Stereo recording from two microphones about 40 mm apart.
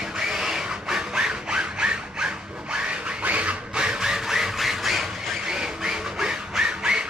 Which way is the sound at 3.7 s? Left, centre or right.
Right.